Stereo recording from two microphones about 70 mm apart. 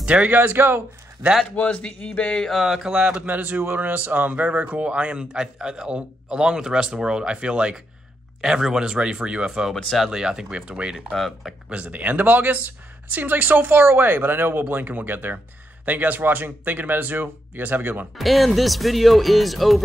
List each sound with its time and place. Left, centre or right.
0.0 s speech: centre
0.4 s speech: right
1.6 s speech: centre
2.4 s speech: centre
9.8 s speech: centre
10.0 s speech: centre
11.1 s speech: centre
11.7 s speech: right
18.1 s speech: centre